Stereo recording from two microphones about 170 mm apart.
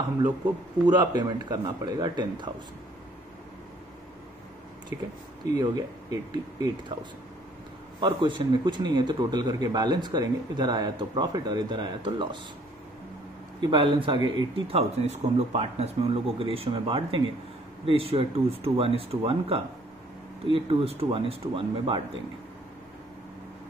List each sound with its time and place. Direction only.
0.8 s a man's voice: 25° right (ahead or behind)
5.6 s a man's voice: 20° right (ahead or behind)
13.6 s a man's voice: 30° right (ahead or behind)
14.7 s speech: 35° right (ahead or behind)